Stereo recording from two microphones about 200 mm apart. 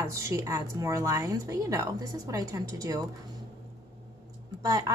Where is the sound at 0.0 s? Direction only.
15° right (ahead or behind).